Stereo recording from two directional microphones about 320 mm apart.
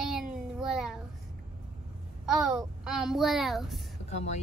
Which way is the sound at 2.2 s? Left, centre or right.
Centre.